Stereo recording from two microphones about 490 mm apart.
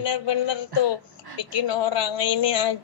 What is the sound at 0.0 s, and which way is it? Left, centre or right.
A woman's voice, left.